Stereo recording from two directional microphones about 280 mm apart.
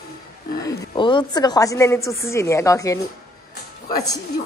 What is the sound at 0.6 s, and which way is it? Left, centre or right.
Speech, centre.